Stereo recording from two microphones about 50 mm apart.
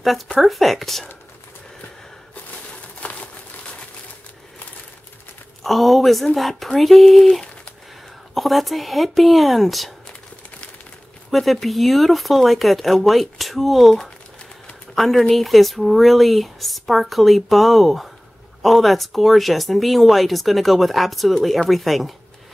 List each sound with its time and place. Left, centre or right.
0.4 s speech: centre
3.0 s a sound: left
5.6 s speech: centre
11.2 s speech: centre
15.0 s speech: centre